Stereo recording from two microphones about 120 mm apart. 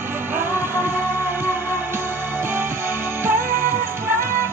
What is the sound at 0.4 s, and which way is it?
Music, 20° right (ahead or behind).